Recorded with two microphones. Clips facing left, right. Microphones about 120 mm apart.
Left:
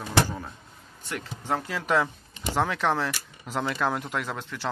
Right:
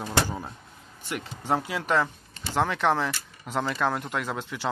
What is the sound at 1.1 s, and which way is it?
Speech, 10° right (ahead or behind).